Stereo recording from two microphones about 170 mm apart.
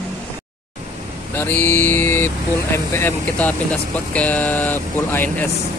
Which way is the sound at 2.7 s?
15° left (ahead or behind).